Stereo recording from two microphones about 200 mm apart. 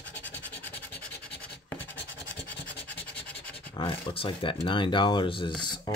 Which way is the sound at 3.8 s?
25° left (ahead or behind).